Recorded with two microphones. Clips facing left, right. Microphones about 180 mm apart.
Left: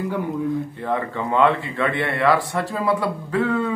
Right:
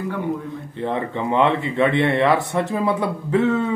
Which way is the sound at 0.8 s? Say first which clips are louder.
Right 4 dB; 20° right (ahead or behind).